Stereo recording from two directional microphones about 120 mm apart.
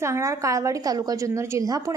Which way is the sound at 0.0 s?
25° right (ahead or behind).